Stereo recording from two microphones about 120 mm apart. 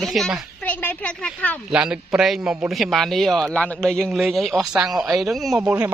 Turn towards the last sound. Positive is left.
turn(degrees=0)  # may be behind; listen again after turning